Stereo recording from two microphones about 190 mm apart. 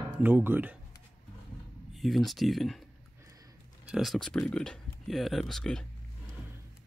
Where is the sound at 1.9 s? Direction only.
Centre (ahead or behind).